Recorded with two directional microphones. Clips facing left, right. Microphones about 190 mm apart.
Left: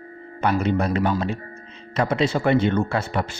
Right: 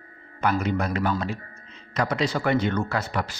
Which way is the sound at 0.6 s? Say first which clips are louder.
Left 4 dB; 30° left (ahead or behind).